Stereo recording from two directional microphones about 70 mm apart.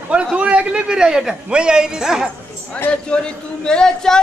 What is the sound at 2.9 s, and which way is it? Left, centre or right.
Speech, centre.